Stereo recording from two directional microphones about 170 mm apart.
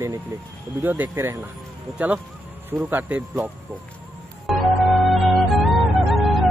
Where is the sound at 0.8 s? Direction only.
15° right (ahead or behind).